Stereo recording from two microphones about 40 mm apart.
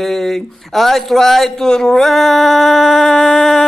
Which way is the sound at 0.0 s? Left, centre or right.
Centre.